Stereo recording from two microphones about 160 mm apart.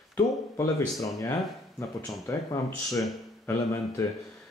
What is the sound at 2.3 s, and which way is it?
Speech, 15° left (ahead or behind).